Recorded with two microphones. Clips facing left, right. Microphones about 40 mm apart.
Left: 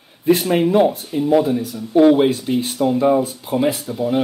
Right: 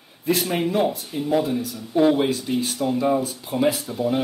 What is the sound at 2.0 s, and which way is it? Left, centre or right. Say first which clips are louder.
Speech: left 5 dB; centre.